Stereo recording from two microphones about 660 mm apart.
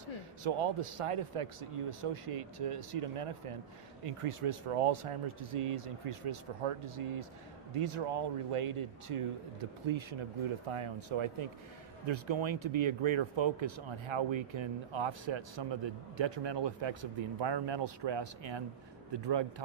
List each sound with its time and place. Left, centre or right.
0.4 s speech: right